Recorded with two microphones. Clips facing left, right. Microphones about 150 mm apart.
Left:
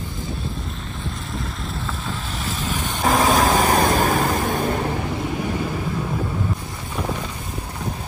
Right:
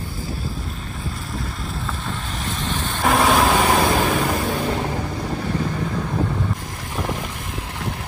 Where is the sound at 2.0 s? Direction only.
Centre (ahead or behind).